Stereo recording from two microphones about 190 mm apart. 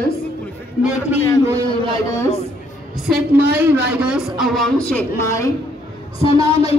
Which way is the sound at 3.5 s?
10° right (ahead or behind).